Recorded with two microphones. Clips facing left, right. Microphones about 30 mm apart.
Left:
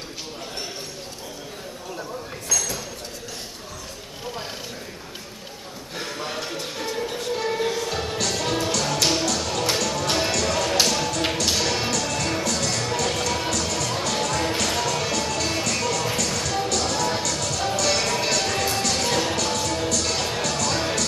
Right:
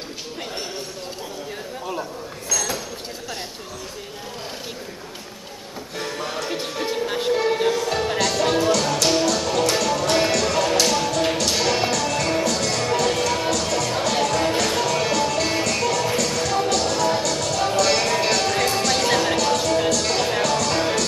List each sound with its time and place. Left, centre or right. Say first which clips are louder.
5.9 s music: right 2 dB; centre
6.5 s music: right 4 dB; right
7.3 s music: right 3 dB; centre